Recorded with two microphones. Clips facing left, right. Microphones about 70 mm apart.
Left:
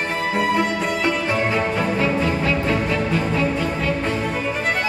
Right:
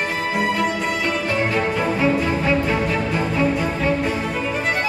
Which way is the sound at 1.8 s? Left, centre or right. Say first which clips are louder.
Right 1 dB; centre.